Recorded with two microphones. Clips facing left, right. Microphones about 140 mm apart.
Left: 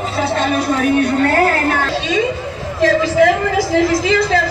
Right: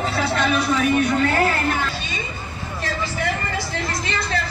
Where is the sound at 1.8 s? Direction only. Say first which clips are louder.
Left 12 dB; 90° left.